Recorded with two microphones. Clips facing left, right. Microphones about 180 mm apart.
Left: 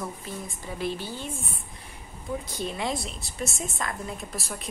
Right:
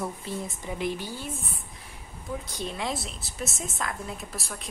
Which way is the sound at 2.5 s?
Centre (ahead or behind).